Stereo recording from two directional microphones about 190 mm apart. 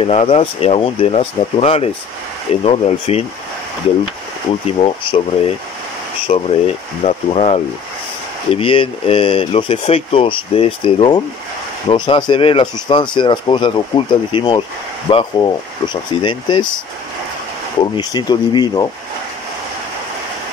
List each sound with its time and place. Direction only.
0.0 s speech: 35° left (ahead or behind)
4.8 s speech: 30° left (ahead or behind)
17.7 s speech: 20° left (ahead or behind)